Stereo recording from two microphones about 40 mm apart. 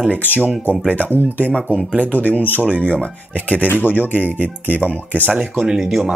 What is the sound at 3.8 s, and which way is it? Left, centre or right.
Speech, left.